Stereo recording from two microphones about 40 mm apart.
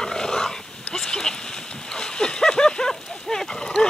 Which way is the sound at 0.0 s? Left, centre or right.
Centre.